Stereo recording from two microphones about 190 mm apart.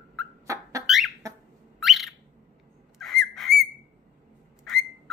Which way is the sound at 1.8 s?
Centre (ahead or behind).